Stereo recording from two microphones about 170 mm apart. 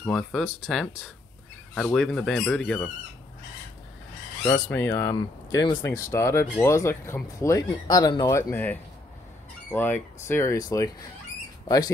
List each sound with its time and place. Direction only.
0.0 s speech: 5° left (ahead or behind)
4.5 s speech: 10° left (ahead or behind)
11.6 s speech: 20° left (ahead or behind)